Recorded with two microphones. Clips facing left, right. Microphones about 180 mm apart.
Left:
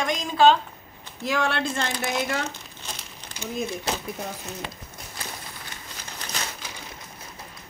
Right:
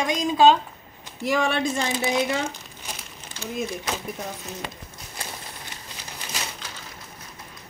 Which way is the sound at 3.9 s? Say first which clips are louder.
Left 1 dB; 30° left (ahead or behind).